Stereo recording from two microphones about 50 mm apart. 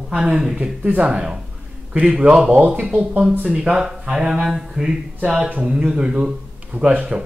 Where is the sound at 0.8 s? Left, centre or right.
Right.